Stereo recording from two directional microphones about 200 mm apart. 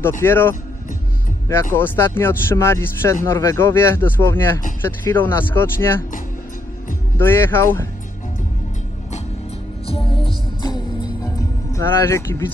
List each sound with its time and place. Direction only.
0.2 s speech: 10° left (ahead or behind)
7.2 s speech: 10° left (ahead or behind)
9.8 s music: 30° left (ahead or behind)